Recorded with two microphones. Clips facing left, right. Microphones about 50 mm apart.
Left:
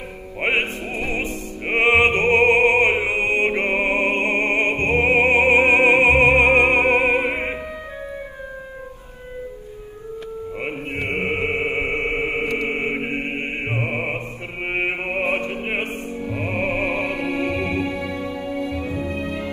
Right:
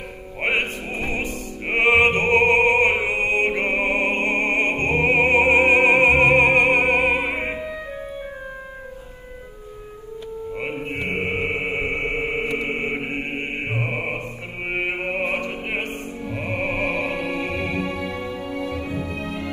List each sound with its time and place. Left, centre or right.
0.4 s music: left
1.7 s opera: left
3.1 s music: left
11.1 s chant: centre
12.6 s mantra: centre
14.9 s music: centre
16.3 s music: centre